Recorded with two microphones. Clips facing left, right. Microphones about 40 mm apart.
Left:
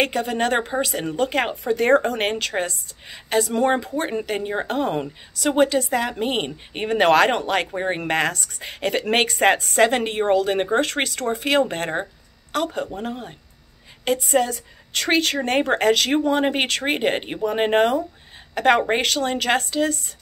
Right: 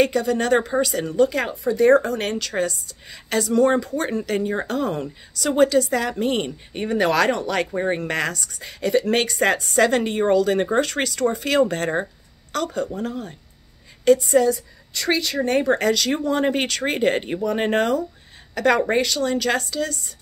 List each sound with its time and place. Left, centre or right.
0.0 s speech: left
7.7 s a woman's voice: left